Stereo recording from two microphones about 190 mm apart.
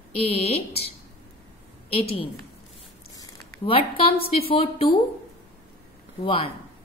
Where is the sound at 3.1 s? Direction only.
30° left (ahead or behind).